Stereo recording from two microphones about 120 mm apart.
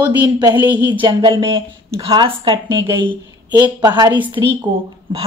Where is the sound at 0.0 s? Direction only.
35° right (ahead or behind).